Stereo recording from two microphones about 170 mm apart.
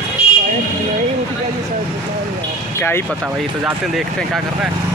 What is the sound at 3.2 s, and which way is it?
Speech, centre (ahead or behind).